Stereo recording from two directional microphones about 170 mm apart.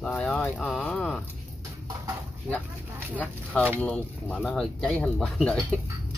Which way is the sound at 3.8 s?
5° left (ahead or behind).